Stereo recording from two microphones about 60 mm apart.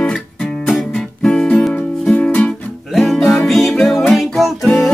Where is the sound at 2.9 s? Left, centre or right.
Centre.